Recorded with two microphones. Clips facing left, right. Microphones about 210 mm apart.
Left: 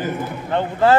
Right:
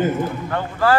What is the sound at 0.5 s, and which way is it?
Speech, 25° left (ahead or behind).